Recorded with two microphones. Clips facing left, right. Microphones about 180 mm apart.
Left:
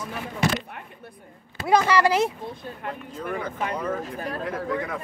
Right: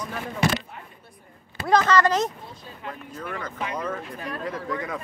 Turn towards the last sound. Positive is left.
turn(degrees=0)  # may be behind; listen again after turning